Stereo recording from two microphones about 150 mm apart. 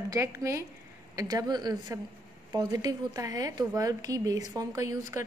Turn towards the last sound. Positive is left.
turn(degrees=-20)  # may be behind; listen again after turning